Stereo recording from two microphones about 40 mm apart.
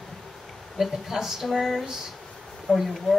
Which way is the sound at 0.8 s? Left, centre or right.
Centre.